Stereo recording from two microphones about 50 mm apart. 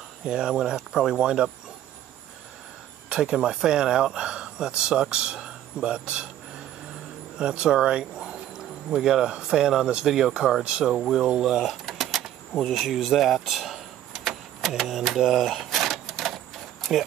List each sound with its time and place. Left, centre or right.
0.2 s speech: centre
3.1 s speech: centre
7.3 s speech: centre
10.9 s speech: centre
11.5 s a sound: centre
12.7 s vehicle: centre
14.7 s speech: centre